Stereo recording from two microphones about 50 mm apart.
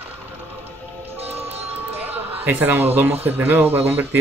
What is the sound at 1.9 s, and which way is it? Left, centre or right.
Speech, right.